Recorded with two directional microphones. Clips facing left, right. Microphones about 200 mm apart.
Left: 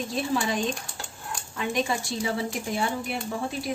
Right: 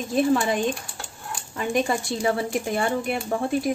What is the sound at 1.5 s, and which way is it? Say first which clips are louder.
A woman's voice: right 4 dB; 50° right (ahead or behind).